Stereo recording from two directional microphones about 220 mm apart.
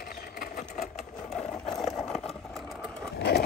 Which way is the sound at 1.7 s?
Centre (ahead or behind).